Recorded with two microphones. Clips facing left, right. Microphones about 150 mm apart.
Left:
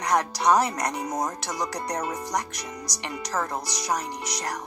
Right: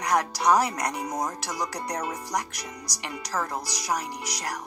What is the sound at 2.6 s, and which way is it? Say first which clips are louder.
Speech: left 3 dB; 25° left (ahead or behind).